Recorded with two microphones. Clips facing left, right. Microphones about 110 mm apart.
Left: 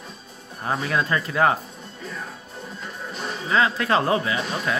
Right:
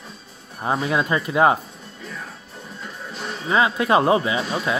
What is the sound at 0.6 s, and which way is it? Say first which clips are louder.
Speech: right 3 dB; 20° right (ahead or behind).